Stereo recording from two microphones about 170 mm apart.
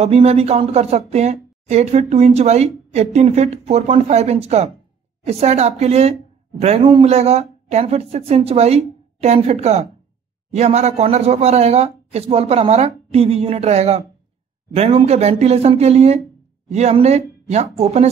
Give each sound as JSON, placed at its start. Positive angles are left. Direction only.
{"t": 0.0, "sound": "speech", "side_deg": -40}